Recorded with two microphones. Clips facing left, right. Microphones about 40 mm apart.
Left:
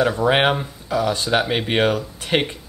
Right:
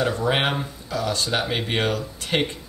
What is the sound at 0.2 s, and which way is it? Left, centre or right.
Speech, centre.